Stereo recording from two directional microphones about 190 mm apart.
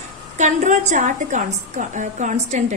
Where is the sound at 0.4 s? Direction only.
40° right (ahead or behind).